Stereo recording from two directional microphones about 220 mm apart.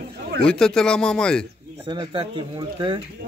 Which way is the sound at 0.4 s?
5° left (ahead or behind).